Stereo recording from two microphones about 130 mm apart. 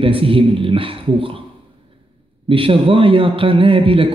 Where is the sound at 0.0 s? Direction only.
45° right (ahead or behind).